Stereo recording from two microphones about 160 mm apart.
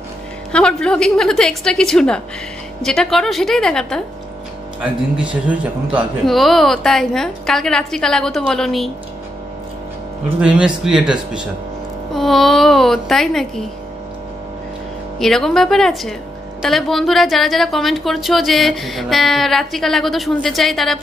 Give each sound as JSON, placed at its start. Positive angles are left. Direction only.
{"t": 0.5, "sound": "speech", "side_deg": 5}
{"t": 5.1, "sound": "speech", "side_deg": -10}
{"t": 10.4, "sound": "speech", "side_deg": -5}
{"t": 15.1, "sound": "speech", "side_deg": 0}